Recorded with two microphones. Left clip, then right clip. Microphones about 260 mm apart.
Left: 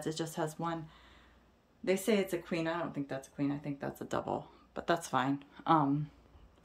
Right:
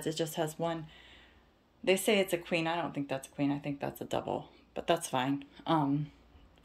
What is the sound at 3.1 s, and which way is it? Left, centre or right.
Speech, left.